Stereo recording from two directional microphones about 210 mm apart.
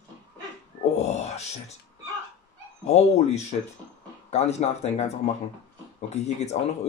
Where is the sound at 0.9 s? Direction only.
30° left (ahead or behind).